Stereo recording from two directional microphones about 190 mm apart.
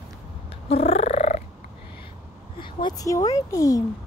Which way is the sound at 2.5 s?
25° left (ahead or behind).